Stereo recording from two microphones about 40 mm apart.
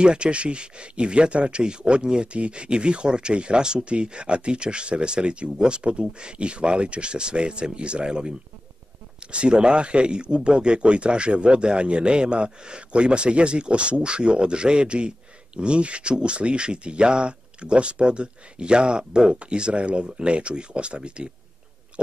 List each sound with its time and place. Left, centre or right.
0.0 s speech: right